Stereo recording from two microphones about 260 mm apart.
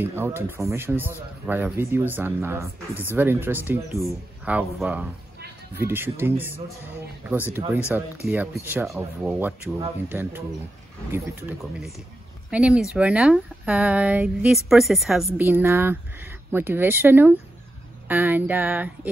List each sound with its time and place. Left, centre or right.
0.0 s speech: centre